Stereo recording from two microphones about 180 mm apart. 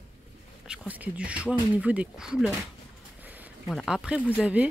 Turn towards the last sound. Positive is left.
turn(degrees=-10)  # may be behind; listen again after turning